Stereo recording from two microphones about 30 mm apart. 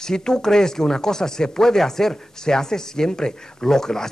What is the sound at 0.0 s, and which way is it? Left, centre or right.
A man's voice, left.